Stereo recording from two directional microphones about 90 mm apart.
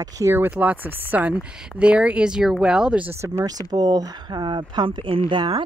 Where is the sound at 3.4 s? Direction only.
45° right (ahead or behind); by 5.6 s 65° right (ahead or behind).